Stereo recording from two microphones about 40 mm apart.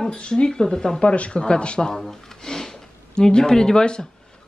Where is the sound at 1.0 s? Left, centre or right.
Left.